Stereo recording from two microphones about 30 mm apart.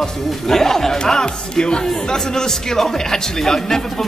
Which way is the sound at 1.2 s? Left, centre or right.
Left.